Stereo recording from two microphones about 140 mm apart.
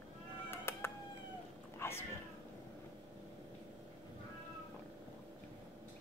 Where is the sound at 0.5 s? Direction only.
15° left (ahead or behind).